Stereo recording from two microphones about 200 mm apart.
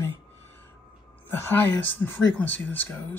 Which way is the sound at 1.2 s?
10° left (ahead or behind).